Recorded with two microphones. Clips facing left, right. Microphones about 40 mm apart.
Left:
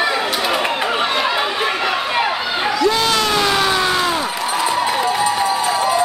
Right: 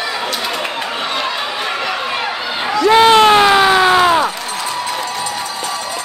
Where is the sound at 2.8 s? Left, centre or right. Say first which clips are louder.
Right 11 dB; right.